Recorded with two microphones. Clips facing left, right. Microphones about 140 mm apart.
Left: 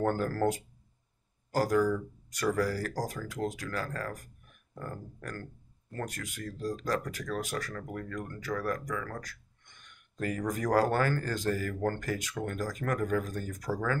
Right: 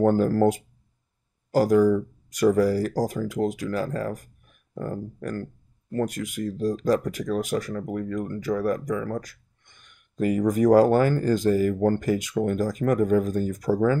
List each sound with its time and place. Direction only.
0.0 s speech: 20° right (ahead or behind)